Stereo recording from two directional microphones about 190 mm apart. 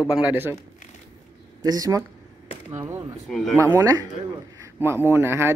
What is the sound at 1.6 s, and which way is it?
Speech, 20° right (ahead or behind).